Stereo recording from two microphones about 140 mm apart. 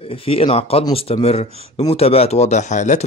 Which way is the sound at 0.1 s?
40° left (ahead or behind).